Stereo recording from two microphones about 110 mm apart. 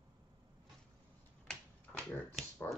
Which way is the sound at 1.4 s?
10° left (ahead or behind).